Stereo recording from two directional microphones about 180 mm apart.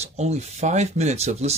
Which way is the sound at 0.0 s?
35° right (ahead or behind).